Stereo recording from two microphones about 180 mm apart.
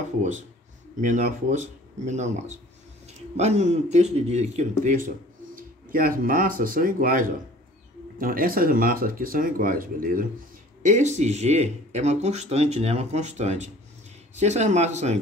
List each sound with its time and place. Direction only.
1.0 s speech: 45° right (ahead or behind)
10.9 s speech: 40° right (ahead or behind)